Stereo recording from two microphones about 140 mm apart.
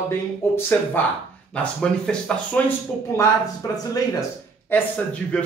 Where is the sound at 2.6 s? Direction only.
20° left (ahead or behind).